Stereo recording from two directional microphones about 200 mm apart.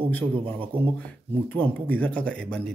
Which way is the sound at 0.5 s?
25° right (ahead or behind).